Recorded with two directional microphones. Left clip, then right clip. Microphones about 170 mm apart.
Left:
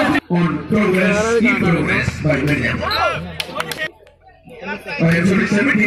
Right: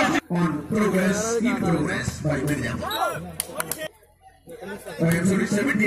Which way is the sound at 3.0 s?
40° right (ahead or behind).